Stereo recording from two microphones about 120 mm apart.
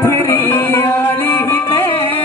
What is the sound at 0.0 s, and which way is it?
Music, 20° left (ahead or behind).